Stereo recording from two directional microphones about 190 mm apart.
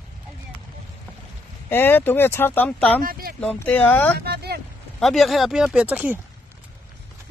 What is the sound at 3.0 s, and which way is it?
Speech, 50° right (ahead or behind).